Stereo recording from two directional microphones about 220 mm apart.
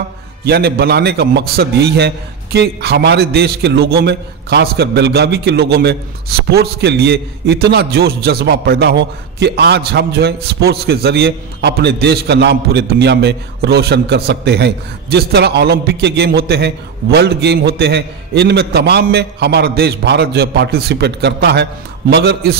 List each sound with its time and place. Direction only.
0.5 s a man's voice: 45° right (ahead or behind)